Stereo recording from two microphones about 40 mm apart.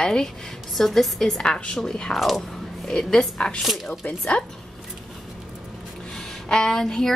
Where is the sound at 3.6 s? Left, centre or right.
Centre.